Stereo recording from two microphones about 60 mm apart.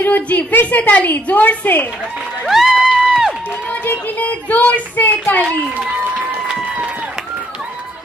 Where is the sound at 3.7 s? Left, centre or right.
Left.